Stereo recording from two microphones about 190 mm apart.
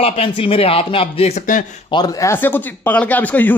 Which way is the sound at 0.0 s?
30° left (ahead or behind).